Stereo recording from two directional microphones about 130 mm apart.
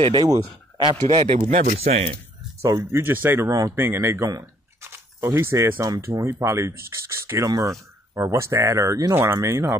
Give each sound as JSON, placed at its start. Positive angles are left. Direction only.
{"t": 0.0, "sound": "a man's voice", "side_deg": -40}
{"t": 1.0, "sound": "a man's voice", "side_deg": -55}
{"t": 2.6, "sound": "speech", "side_deg": -25}